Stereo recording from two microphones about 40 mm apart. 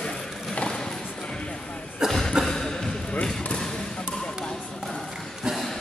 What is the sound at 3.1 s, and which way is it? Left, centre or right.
Basketball bounce, left.